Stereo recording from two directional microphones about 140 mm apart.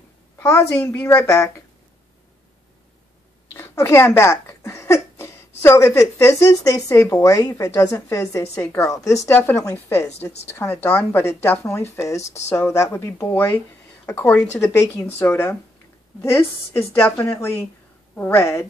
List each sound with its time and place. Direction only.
0.4 s a woman's voice: 15° left (ahead or behind)
3.5 s a woman's voice: 20° left (ahead or behind)